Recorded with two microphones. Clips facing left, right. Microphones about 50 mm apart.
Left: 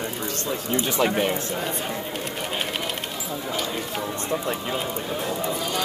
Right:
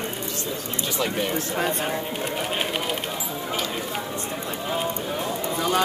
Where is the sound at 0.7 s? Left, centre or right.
Left.